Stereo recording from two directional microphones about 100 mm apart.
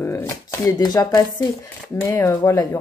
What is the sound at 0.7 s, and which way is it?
Speech, 40° left (ahead or behind).